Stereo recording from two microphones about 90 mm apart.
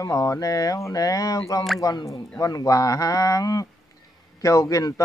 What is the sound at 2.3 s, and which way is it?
Speech, 40° left (ahead or behind).